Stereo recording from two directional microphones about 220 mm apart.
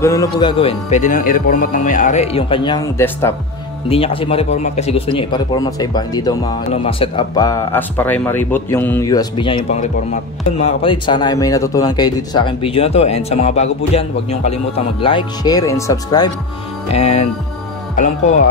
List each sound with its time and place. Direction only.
0.0 s speech: 15° left (ahead or behind)
3.9 s speech: 25° left (ahead or behind)
16.9 s speech: 30° left (ahead or behind)